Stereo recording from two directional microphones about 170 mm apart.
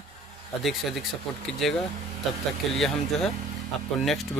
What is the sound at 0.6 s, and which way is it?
Speech, centre (ahead or behind).